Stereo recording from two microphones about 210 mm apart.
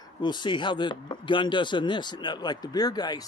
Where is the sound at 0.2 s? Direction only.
20° left (ahead or behind).